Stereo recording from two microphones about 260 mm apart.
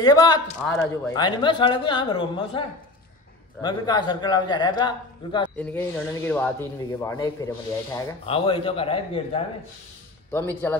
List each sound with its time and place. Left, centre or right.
0.0 s speech: centre
0.7 s speech: centre
1.1 s speech: centre
3.6 s speech: centre
10.3 s speech: centre